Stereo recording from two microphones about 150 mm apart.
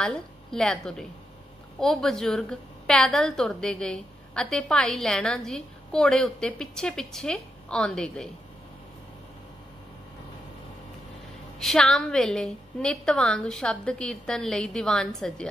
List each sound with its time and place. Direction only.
0.0 s a woman's voice: 5° left (ahead or behind)
11.6 s a woman's voice: 5° left (ahead or behind)